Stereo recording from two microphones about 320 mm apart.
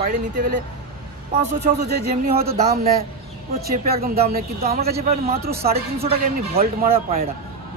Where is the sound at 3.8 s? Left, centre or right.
Right.